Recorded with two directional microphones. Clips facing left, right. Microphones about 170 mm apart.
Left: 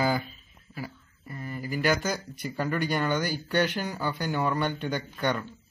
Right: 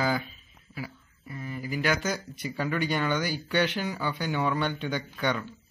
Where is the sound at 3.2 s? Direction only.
45° left (ahead or behind).